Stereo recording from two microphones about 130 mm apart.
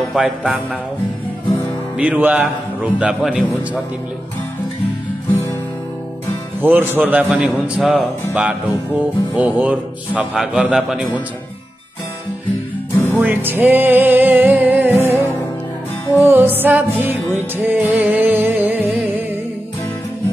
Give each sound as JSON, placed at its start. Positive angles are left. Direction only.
{"t": 0.0, "sound": "speech", "side_deg": -5}
{"t": 2.0, "sound": "speech", "side_deg": -10}
{"t": 6.6, "sound": "speech", "side_deg": -15}
{"t": 12.9, "sound": "music", "side_deg": 20}
{"t": 13.2, "sound": "music", "side_deg": -15}
{"t": 16.3, "sound": "speech", "side_deg": -15}
{"t": 17.6, "sound": "music", "side_deg": -15}